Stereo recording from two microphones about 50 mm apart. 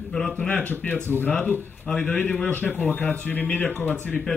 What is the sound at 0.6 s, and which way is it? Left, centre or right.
Speech, left.